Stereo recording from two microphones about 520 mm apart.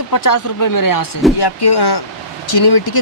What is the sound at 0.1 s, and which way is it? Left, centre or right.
Speech, left.